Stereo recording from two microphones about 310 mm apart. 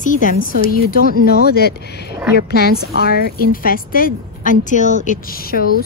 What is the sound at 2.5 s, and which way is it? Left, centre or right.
A woman's voice, left.